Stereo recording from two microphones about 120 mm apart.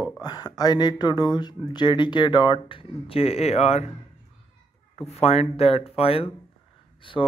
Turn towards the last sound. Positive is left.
turn(degrees=45)  # may be behind; listen again after turning